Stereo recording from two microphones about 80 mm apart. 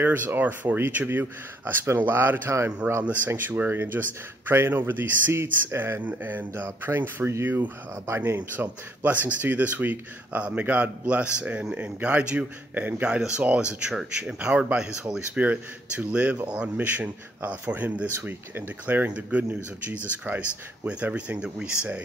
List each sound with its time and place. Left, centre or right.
0.0 s speech: right
8.4 s speech: right